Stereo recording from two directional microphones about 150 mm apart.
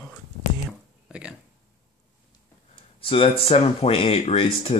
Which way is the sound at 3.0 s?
40° left (ahead or behind).